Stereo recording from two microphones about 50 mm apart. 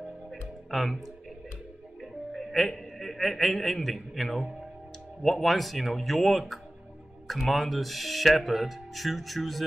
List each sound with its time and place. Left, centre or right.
0.3 s music: centre
2.0 s a man's voice: centre